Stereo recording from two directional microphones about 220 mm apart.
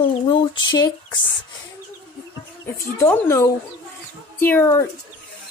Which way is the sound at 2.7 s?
10° left (ahead or behind).